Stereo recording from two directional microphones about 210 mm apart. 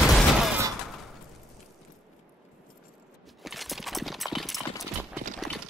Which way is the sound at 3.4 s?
Centre (ahead or behind).